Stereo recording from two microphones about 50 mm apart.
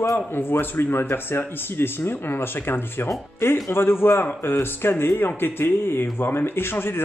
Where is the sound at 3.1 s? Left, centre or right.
Left.